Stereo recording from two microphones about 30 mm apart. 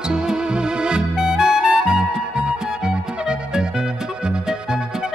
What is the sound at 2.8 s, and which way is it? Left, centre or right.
Music, right.